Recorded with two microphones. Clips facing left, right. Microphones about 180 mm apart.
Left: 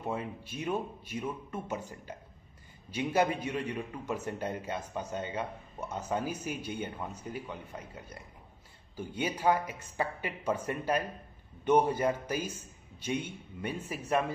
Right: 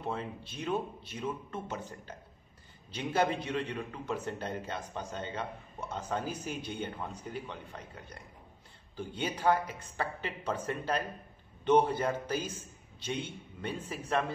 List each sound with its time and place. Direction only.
0.0 s a man's voice: 10° left (ahead or behind)